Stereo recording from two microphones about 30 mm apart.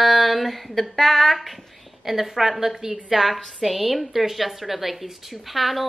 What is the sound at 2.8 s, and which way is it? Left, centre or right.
Speech, right.